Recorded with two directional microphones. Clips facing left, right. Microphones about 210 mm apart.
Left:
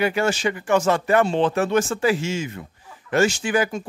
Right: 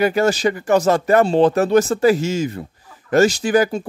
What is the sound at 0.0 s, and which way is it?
Speech, 40° right (ahead or behind).